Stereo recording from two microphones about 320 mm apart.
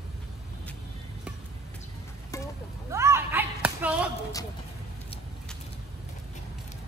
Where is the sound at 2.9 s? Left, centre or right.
Centre.